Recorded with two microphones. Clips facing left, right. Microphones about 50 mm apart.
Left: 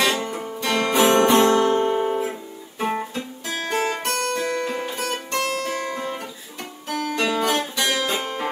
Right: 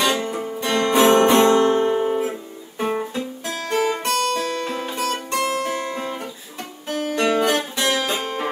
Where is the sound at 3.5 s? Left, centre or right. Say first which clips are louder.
Right 2 dB; left.